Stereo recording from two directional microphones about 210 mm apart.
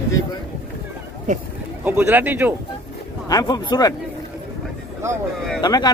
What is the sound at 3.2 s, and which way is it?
Speech, 20° left (ahead or behind).